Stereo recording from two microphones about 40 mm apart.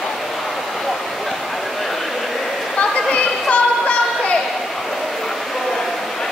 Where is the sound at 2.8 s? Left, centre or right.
Left.